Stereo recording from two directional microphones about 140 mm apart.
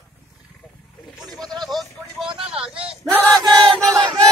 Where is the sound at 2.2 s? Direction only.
35° right (ahead or behind).